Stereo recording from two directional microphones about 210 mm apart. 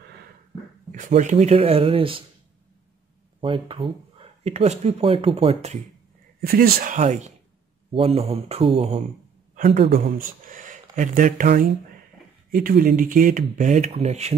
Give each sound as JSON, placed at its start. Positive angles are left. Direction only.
{"t": 0.9, "sound": "speech", "side_deg": -35}
{"t": 3.3, "sound": "speech", "side_deg": -25}
{"t": 6.4, "sound": "speech", "side_deg": -45}
{"t": 10.0, "sound": "speech", "side_deg": -40}